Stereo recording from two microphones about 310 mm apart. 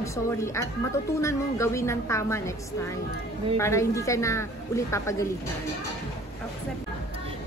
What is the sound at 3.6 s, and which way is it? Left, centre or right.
Speech, centre.